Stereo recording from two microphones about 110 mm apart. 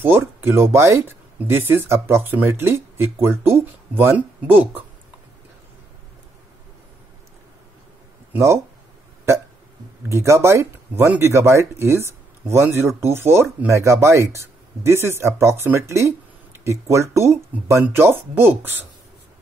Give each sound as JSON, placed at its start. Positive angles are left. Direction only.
{"t": 0.0, "sound": "speech", "side_deg": -20}
{"t": 10.0, "sound": "speech", "side_deg": -25}